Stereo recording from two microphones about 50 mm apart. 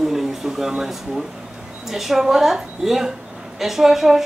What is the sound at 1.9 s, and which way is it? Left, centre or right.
A woman's voice, centre.